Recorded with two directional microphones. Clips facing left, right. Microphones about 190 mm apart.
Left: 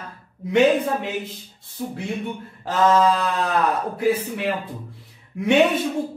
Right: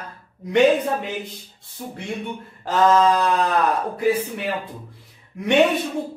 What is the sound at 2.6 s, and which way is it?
Speech, centre (ahead or behind).